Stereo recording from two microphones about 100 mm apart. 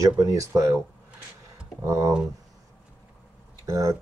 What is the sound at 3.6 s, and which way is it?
Speech, 35° right (ahead or behind).